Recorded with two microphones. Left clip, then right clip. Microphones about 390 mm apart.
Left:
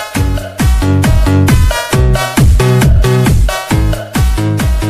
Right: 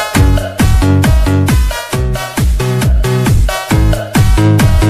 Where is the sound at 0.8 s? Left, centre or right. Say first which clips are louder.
Even; centre.